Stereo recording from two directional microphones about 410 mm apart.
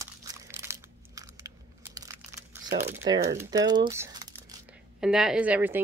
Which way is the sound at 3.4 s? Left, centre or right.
Centre.